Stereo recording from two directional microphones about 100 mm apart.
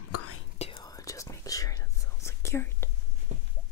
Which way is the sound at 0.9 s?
35° left (ahead or behind).